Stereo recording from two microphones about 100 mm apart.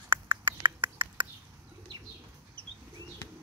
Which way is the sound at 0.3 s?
55° right (ahead or behind).